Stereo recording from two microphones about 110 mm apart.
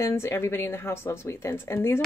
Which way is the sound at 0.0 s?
25° left (ahead or behind).